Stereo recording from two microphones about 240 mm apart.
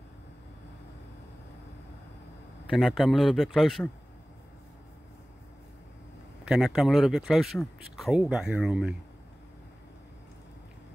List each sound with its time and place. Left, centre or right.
2.7 s speech: centre
6.5 s speech: centre